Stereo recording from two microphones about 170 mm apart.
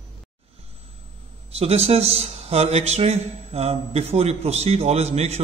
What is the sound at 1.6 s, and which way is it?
A man's voice, 35° right (ahead or behind).